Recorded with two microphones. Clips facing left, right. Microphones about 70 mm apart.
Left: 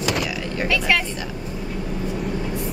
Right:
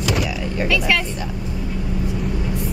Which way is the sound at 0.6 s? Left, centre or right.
Left.